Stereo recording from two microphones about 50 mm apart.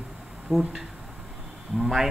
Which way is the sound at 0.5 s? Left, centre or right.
Centre.